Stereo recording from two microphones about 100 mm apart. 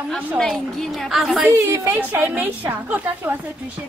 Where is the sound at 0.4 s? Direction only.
5° left (ahead or behind).